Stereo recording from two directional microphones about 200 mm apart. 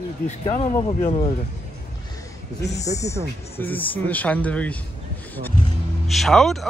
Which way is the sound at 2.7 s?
15° left (ahead or behind).